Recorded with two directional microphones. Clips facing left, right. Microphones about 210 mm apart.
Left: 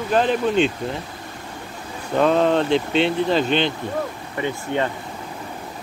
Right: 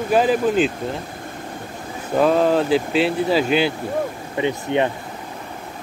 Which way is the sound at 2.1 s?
5° right (ahead or behind).